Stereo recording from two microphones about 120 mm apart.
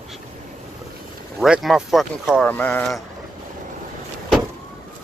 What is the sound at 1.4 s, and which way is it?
Speech, 5° right (ahead or behind).